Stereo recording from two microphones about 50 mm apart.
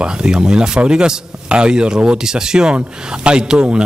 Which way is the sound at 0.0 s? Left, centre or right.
Centre.